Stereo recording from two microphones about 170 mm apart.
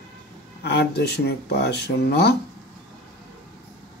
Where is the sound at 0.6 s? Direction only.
70° left (ahead or behind).